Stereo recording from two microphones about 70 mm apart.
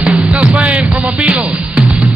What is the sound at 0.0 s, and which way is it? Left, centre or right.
Music, centre.